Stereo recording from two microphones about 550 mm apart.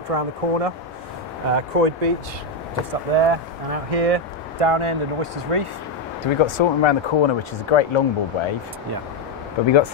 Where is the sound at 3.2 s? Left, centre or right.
Right.